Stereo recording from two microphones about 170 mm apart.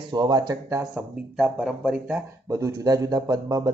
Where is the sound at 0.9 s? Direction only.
5° right (ahead or behind).